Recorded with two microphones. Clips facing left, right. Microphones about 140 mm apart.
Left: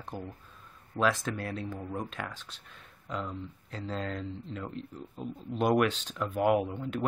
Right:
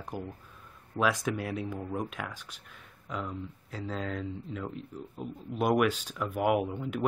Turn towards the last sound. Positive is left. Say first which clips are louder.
# right 1 dB
turn(degrees=-10)  # may be behind; listen again after turning